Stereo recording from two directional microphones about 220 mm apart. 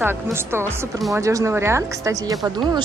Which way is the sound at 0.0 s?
10° right (ahead or behind).